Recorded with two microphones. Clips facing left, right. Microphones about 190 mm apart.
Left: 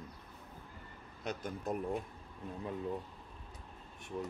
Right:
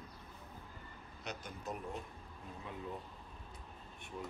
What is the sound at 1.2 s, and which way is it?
Speech, 50° left (ahead or behind).